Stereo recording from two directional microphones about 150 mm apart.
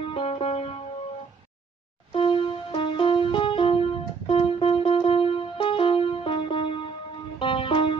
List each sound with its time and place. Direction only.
0.0 s music: 35° left (ahead or behind)
2.1 s music: 35° left (ahead or behind)